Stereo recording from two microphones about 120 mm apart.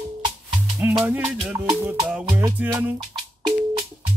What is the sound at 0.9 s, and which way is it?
Music, 10° right (ahead or behind).